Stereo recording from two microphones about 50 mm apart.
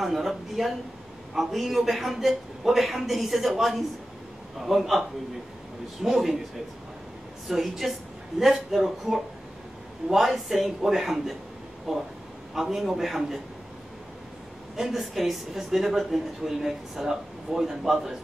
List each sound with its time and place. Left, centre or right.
0.0 s a woman's voice: centre
6.0 s a man's voice: centre
7.4 s a woman's voice: centre
14.8 s a woman's voice: centre